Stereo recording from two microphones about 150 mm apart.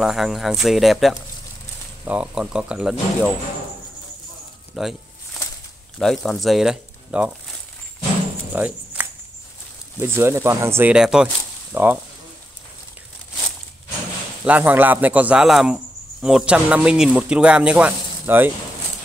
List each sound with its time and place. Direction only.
0.0 s speech: centre (ahead or behind)
4.7 s a sound: 5° right (ahead or behind)
5.9 s speech: centre (ahead or behind)
8.5 s music: 10° right (ahead or behind)
9.9 s speech: 15° right (ahead or behind)
14.4 s speech: 10° right (ahead or behind)